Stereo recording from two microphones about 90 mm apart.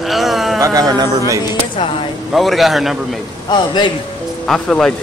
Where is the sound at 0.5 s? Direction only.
40° right (ahead or behind).